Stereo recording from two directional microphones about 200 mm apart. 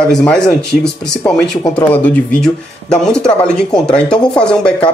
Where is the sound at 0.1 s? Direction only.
5° left (ahead or behind).